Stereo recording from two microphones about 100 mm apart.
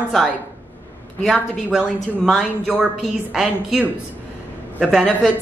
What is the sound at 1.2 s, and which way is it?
A woman's voice, centre (ahead or behind).